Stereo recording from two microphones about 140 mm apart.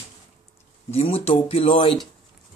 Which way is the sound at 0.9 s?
45° left (ahead or behind).